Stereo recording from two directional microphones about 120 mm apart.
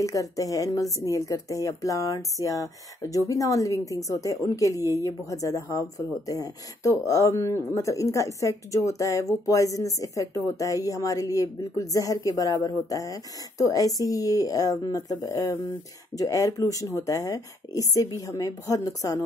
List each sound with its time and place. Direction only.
0.0 s speech: 30° left (ahead or behind)